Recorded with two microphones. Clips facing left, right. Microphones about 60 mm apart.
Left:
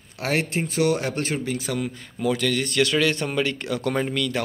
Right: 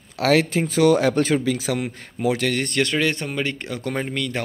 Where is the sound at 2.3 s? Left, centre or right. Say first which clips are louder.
Even; right.